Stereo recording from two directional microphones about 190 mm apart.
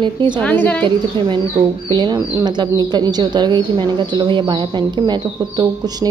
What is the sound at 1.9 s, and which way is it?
Speech, 25° right (ahead or behind).